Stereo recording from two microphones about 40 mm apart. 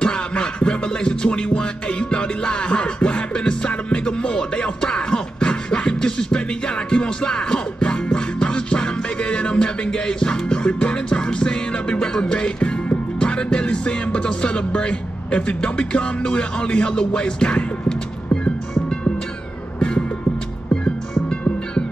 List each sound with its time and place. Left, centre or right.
0.0 s music: left
4.8 s beatboxing: left
13.2 s music: left